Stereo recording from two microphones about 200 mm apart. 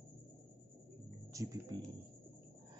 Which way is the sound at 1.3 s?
15° right (ahead or behind).